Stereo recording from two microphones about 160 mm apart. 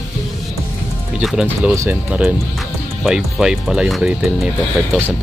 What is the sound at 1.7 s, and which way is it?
Speech, 15° right (ahead or behind).